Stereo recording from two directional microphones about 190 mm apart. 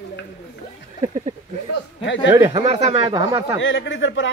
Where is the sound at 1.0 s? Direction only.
35° right (ahead or behind).